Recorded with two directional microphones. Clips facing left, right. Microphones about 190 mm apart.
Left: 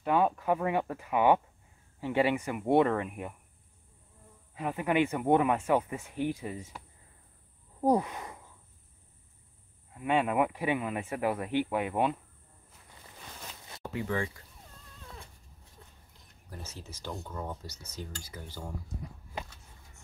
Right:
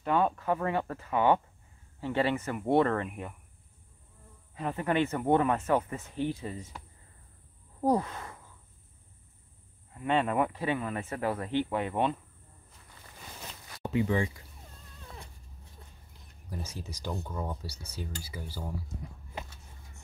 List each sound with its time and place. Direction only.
0.0 s speech: 10° left (ahead or behind)
4.6 s speech: 10° left (ahead or behind)
7.8 s speech: 15° left (ahead or behind)
9.9 s speech: 10° left (ahead or behind)
13.8 s speech: 15° right (ahead or behind)
16.4 s speech: 15° right (ahead or behind)